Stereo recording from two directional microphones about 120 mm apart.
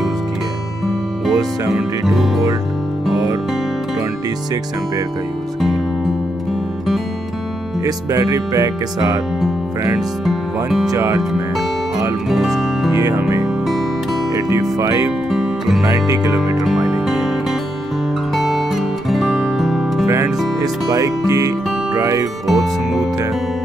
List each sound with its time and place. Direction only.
1.2 s music: centre (ahead or behind)
7.8 s speech: 30° right (ahead or behind)
9.9 s speech: centre (ahead or behind)
10.9 s speech: 30° right (ahead or behind)
12.3 s music: centre (ahead or behind)
14.3 s speech: 30° right (ahead or behind)
15.0 s music: centre (ahead or behind)
15.8 s speech: 30° right (ahead or behind)
16.6 s music: 5° right (ahead or behind)
20.6 s speech: 30° right (ahead or behind)
22.5 s music: centre (ahead or behind)